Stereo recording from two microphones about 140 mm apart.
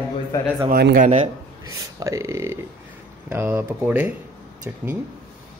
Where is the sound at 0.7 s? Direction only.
70° right (ahead or behind).